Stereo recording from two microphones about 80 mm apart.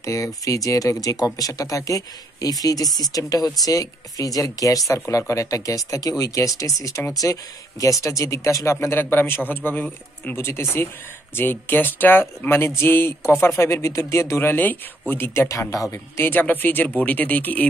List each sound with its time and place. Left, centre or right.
0.0 s speech: left
8.0 s speech: left
16.2 s speech: left